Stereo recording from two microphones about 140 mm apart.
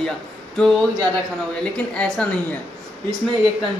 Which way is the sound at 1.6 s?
5° left (ahead or behind).